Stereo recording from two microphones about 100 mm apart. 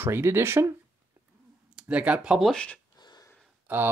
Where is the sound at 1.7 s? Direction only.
15° right (ahead or behind).